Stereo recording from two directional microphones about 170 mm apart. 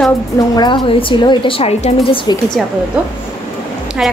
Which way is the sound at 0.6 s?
25° left (ahead or behind).